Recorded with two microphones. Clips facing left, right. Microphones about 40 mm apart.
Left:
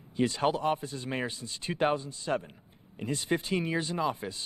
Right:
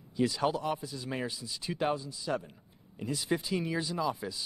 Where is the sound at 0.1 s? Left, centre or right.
Left.